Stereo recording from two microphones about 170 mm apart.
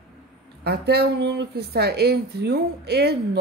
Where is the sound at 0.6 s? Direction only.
70° right (ahead or behind).